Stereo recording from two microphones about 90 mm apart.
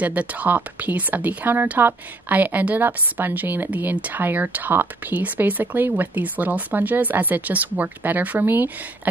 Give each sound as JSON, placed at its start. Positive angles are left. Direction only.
{"t": 0.0, "sound": "speech", "side_deg": -15}